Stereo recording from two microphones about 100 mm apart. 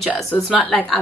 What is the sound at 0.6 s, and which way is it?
Speech, 10° left (ahead or behind).